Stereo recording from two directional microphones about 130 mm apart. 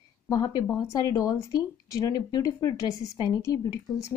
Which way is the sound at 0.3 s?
25° left (ahead or behind).